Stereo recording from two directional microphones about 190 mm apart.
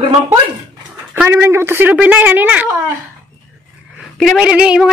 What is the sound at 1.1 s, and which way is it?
A woman's voice, 10° right (ahead or behind).